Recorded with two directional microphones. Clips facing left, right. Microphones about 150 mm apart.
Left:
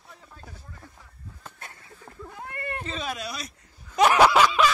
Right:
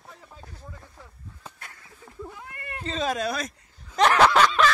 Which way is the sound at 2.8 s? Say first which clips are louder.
Right 11 dB; 40° right (ahead or behind).